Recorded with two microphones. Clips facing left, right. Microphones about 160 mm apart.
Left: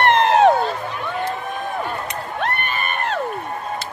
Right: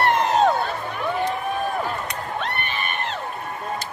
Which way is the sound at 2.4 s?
45° left (ahead or behind).